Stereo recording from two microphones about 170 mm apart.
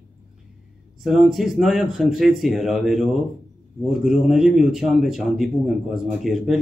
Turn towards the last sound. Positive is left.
turn(degrees=0)  # may be behind; listen again after turning